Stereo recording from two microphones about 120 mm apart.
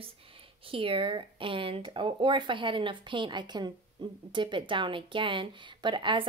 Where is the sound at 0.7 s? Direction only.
50° right (ahead or behind).